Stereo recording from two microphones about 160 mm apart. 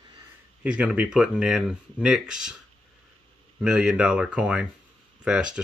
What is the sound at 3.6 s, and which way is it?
Speech, 5° right (ahead or behind).